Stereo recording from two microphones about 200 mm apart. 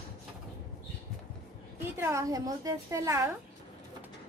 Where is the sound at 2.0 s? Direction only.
15° right (ahead or behind).